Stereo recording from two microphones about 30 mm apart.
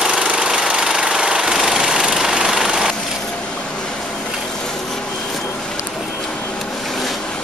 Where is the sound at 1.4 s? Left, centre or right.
Centre.